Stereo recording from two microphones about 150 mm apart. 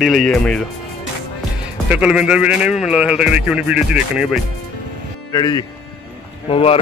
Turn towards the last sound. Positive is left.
turn(degrees=40)  # may be behind; listen again after turning